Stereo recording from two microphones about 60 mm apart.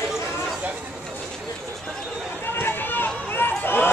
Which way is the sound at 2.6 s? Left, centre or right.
Left.